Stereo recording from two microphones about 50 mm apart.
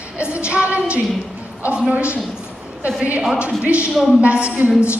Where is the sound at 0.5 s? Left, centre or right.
Right.